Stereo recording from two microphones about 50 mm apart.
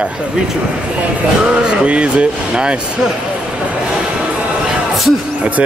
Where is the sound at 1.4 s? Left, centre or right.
Right.